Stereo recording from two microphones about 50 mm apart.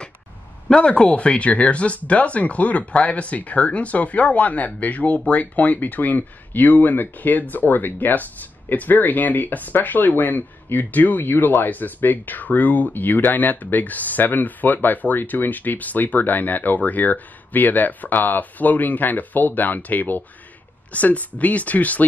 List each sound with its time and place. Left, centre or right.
0.7 s speech: centre